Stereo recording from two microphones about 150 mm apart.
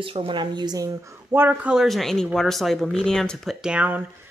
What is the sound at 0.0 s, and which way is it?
Speech, 35° right (ahead or behind).